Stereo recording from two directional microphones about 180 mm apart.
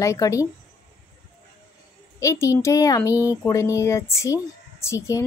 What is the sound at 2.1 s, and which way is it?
Speech, 15° left (ahead or behind).